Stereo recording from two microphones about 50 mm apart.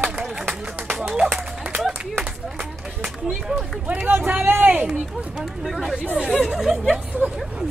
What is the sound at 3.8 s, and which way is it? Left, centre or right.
Speech, right.